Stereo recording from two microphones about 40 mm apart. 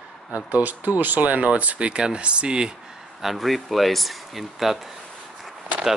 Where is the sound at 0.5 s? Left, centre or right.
Right.